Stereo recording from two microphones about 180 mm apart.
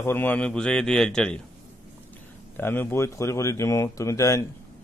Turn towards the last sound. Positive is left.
turn(degrees=15)  # may be behind; listen again after turning